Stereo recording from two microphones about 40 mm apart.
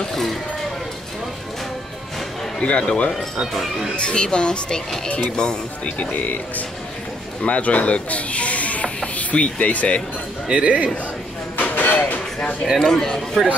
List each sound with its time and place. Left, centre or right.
0.0 s a sound: centre
2.6 s speech: left
5.9 s speech: left
10.5 s a man's voice: right
11.5 s train: left
12.7 s a man's voice: centre